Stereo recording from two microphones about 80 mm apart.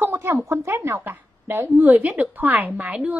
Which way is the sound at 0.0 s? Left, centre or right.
Right.